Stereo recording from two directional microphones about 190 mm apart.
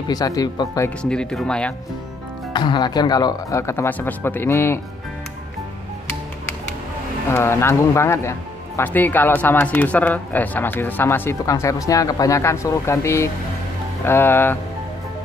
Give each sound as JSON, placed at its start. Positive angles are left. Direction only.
{"t": 0.1, "sound": "speech", "side_deg": 20}
{"t": 1.0, "sound": "speech", "side_deg": 5}
{"t": 2.5, "sound": "speech", "side_deg": 25}
{"t": 7.3, "sound": "speech", "side_deg": 15}